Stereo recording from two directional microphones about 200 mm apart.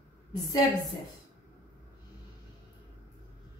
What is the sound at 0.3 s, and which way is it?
Speech, 20° left (ahead or behind).